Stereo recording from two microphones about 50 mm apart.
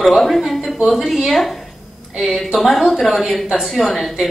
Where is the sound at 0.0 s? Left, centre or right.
Centre.